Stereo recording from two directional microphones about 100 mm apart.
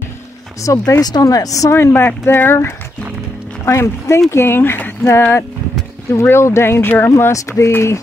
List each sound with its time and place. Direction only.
0.6 s speech: 35° left (ahead or behind)